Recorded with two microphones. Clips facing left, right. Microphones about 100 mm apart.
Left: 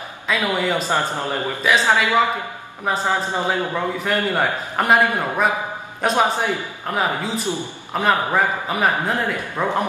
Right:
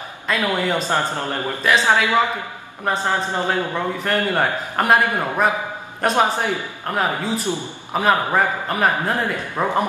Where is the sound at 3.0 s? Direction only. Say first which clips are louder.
Left 1 dB; 15° left (ahead or behind).